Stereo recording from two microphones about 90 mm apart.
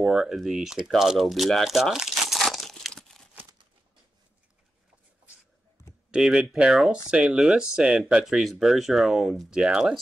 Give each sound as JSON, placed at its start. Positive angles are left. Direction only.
{"t": 0.0, "sound": "speech", "side_deg": -5}
{"t": 6.1, "sound": "speech", "side_deg": -10}